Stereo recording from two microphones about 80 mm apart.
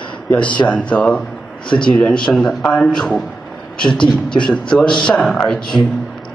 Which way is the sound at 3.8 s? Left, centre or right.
Left.